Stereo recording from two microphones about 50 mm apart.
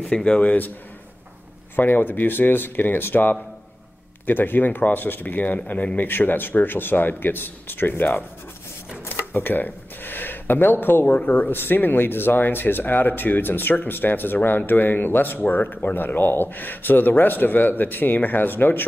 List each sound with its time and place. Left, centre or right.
0.0 s a man's voice: left
1.8 s speech: left